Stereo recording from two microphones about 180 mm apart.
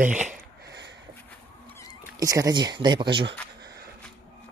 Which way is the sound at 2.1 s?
20° right (ahead or behind).